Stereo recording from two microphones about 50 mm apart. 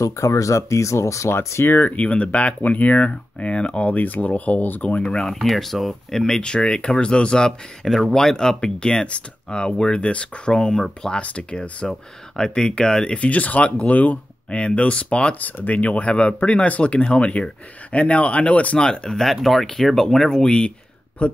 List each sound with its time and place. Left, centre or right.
0.0 s speech: left
1.6 s speech: left
1.9 s speech: left
5.1 s speech: centre
6.2 s speech: centre
7.8 s speech: centre
11.1 s speech: left
15.3 s speech: left
18.8 s speech: centre